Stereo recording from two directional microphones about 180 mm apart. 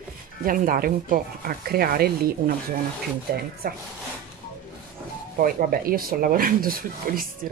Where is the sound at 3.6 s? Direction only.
55° right (ahead or behind).